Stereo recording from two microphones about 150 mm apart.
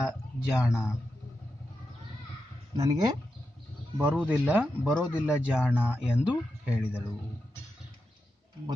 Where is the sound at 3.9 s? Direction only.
10° right (ahead or behind).